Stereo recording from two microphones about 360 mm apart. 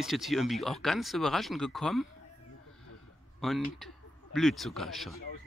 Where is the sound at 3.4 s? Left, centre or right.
Centre.